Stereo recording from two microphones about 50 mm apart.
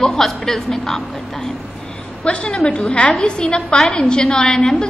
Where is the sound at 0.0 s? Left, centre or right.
Centre.